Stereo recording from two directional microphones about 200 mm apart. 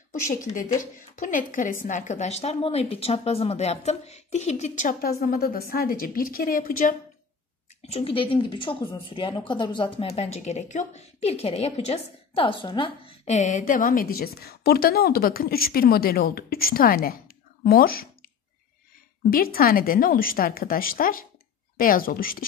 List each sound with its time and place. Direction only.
0.3 s speech: 40° left (ahead or behind)
7.8 s a woman's voice: 30° left (ahead or behind); by 18.0 s 50° left (ahead or behind)
19.3 s a woman's voice: 45° left (ahead or behind)